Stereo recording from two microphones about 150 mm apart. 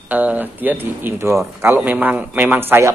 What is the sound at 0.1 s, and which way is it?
Speech, 10° right (ahead or behind).